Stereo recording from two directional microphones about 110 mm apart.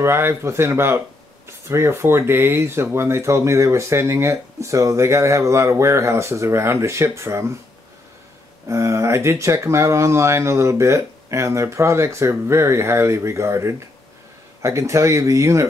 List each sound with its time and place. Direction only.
0.0 s speech: 25° right (ahead or behind)
8.6 s speech: 25° right (ahead or behind)